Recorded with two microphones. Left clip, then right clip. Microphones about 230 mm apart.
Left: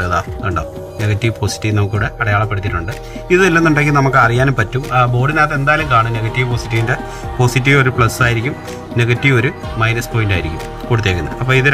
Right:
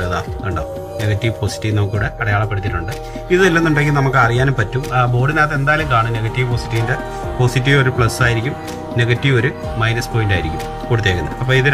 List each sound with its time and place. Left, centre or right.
0.0 s a man's voice: centre